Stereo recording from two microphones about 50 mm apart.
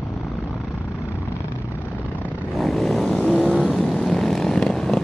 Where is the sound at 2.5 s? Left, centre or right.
Centre.